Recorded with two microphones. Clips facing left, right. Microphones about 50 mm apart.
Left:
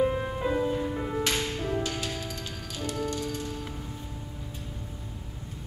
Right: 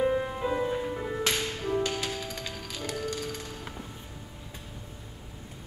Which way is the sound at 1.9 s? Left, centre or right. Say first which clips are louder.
Right 1 dB; right.